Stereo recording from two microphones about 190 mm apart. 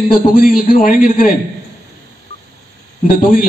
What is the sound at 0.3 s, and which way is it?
Speech, 50° left (ahead or behind).